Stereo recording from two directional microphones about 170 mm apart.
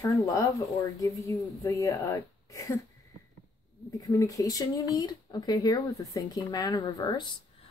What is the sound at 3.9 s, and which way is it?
Speech, 20° left (ahead or behind).